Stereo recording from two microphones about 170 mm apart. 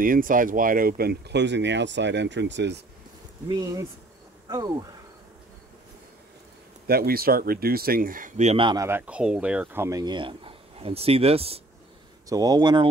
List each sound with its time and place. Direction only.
0.0 s speech: 55° right (ahead or behind); by 2.8 s 90° right
3.4 s speech: 25° right (ahead or behind)
6.9 s speech: 65° right (ahead or behind); by 8.7 s 35° right (ahead or behind)
8.7 s speech: 15° right (ahead or behind); by 11.6 s 35° right (ahead or behind)
12.3 s speech: 20° right (ahead or behind)